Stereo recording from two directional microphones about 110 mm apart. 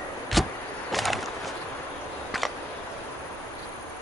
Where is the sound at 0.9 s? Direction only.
Centre (ahead or behind).